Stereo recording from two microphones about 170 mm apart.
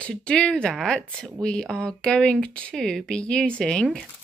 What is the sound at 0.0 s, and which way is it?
Speech, 5° left (ahead or behind).